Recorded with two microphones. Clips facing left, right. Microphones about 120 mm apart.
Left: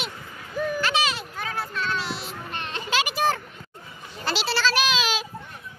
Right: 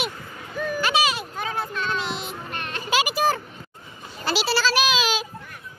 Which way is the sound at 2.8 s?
10° right (ahead or behind).